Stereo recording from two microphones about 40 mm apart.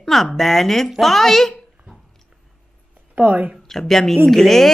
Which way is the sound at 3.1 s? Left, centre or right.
Right.